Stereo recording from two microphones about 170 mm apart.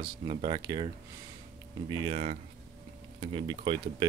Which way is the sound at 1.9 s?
30° right (ahead or behind).